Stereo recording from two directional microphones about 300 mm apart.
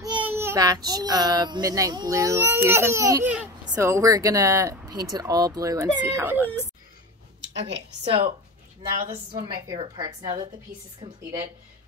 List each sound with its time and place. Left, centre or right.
0.0 s a child's voice: centre
7.4 s a woman's voice: right
8.0 s speech: centre
9.3 s a child's voice: centre